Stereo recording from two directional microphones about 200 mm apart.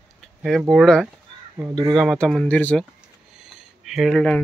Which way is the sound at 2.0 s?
Centre (ahead or behind).